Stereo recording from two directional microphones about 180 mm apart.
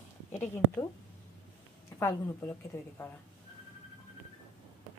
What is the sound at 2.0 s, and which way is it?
Speech, 15° left (ahead or behind).